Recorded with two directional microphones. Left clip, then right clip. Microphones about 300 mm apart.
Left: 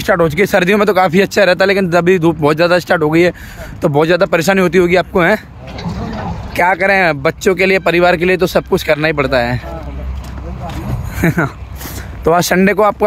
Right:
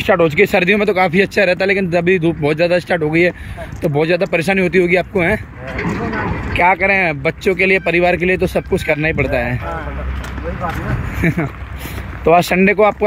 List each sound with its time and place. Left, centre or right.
0.0 s speech: centre
5.8 s speech: left
6.5 s speech: centre
11.1 s speech: centre